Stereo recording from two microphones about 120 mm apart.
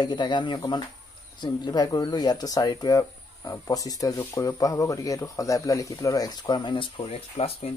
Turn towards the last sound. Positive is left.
turn(degrees=55)  # may be behind; listen again after turning